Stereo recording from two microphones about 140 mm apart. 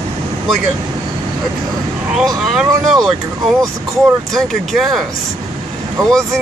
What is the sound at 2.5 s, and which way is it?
Speech, centre (ahead or behind).